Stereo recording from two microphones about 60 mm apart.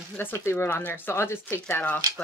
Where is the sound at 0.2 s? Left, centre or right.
Left.